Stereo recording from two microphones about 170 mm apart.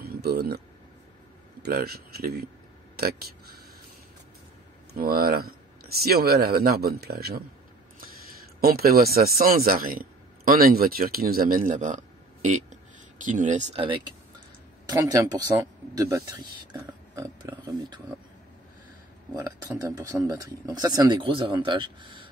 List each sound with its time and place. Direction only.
0.0 s a sound: 65° right (ahead or behind)
1.6 s speech: 65° right (ahead or behind)
4.9 s speech: 60° right (ahead or behind)
8.5 s speech: 60° right (ahead or behind); by 13.8 s 45° right (ahead or behind)
13.8 s speech: 30° right (ahead or behind)
17.1 s oink: 20° right (ahead or behind)
19.3 s speech: 20° right (ahead or behind)